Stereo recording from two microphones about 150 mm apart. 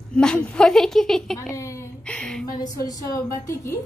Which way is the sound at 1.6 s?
20° left (ahead or behind).